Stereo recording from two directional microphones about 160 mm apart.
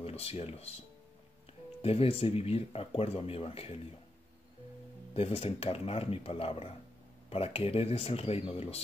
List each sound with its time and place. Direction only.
0.0 s speech: 40° left (ahead or behind)
1.8 s speech: 35° left (ahead or behind)
5.1 s speech: 35° left (ahead or behind)